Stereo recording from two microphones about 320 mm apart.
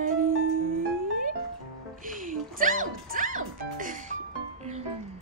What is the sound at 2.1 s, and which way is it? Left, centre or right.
Music, right.